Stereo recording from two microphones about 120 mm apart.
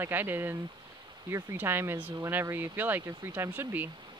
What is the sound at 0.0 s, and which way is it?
Speech, 15° right (ahead or behind).